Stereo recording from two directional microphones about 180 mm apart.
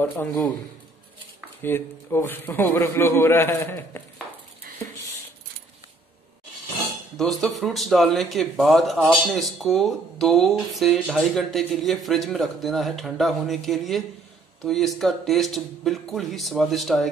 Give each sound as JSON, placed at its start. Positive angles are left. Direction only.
{"t": 0.0, "sound": "a man's voice", "side_deg": 10}
{"t": 1.6, "sound": "a man's voice", "side_deg": 10}
{"t": 4.7, "sound": "a sound", "side_deg": -55}
{"t": 7.2, "sound": "speech", "side_deg": 0}